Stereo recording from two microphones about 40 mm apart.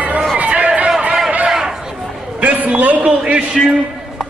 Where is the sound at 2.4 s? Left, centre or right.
Right.